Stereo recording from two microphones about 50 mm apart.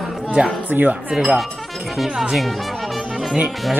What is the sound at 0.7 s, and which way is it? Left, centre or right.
Speech, right.